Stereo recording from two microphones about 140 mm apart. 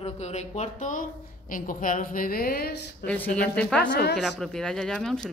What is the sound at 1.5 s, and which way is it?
A woman's voice, 75° left (ahead or behind).